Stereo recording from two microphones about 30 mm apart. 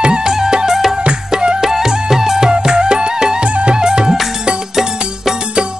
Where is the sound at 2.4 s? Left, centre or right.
Right.